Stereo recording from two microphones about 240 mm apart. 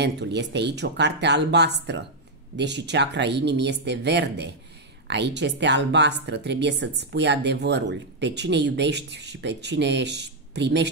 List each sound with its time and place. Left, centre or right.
0.0 s a woman's voice: right